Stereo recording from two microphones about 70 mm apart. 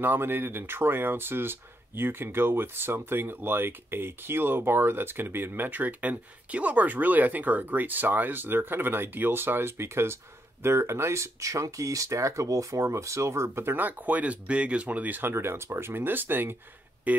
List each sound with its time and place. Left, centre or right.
0.0 s speech: right